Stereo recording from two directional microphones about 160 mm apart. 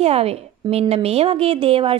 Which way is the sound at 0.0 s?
40° right (ahead or behind).